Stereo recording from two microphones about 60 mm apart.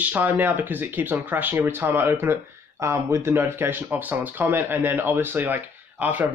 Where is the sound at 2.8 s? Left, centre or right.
Right.